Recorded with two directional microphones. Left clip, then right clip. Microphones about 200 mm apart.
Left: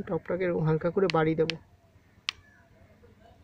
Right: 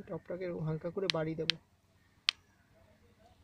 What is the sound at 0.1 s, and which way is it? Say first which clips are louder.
Speech: left 11 dB; 15° left (ahead or behind).